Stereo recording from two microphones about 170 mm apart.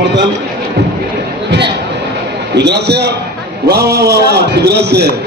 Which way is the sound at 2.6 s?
75° right (ahead or behind).